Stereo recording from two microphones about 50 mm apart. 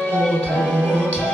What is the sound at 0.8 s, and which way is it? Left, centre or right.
Music, right.